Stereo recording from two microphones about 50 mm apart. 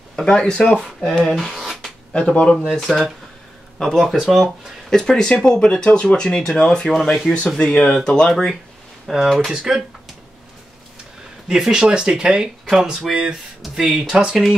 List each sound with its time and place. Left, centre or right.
0.1 s speech: centre
1.2 s speech: centre
2.1 s speech: left
2.5 s speech: centre
4.1 s speech: centre
4.8 s speech: centre
9.1 s speech: centre
11.4 s speech: centre